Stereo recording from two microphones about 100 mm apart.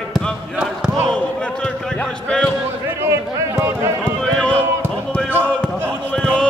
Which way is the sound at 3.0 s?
25° right (ahead or behind).